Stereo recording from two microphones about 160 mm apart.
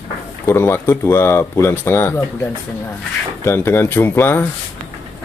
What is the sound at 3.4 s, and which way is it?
Speech, 15° left (ahead or behind).